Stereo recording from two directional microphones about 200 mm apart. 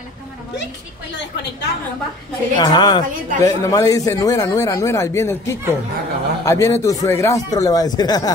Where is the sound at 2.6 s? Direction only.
20° left (ahead or behind).